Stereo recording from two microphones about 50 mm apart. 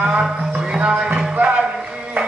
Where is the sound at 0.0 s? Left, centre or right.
Centre.